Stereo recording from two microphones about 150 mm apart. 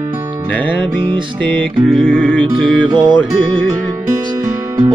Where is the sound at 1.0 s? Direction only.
35° right (ahead or behind).